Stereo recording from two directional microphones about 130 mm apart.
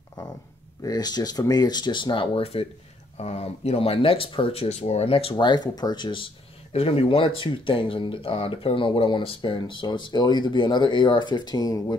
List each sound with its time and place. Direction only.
0.8 s speech: 30° left (ahead or behind)
6.7 s speech: 50° left (ahead or behind); by 11.8 s 30° left (ahead or behind)